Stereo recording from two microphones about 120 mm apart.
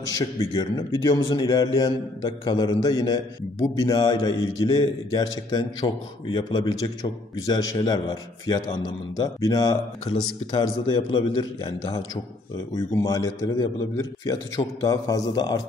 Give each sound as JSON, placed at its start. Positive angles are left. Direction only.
{"t": 0.1, "sound": "a man's voice", "side_deg": 30}
{"t": 12.9, "sound": "a man's voice", "side_deg": 30}